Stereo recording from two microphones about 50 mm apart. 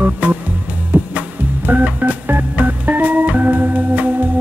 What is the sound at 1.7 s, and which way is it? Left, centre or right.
Organ, right.